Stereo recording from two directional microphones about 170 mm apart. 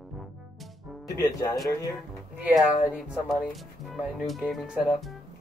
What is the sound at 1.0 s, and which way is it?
Speech, 20° left (ahead or behind).